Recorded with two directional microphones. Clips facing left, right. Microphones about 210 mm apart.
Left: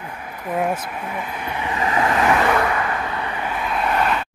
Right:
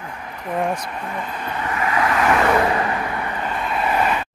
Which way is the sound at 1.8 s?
25° left (ahead or behind).